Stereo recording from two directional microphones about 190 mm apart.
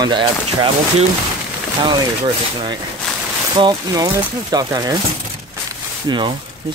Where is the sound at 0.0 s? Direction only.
25° right (ahead or behind).